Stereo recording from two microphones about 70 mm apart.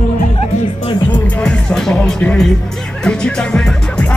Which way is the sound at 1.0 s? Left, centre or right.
Left.